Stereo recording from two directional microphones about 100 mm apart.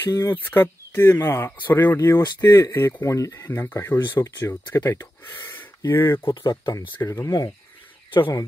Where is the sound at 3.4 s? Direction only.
25° left (ahead or behind).